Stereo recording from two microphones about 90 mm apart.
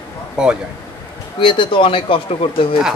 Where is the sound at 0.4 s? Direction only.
10° right (ahead or behind).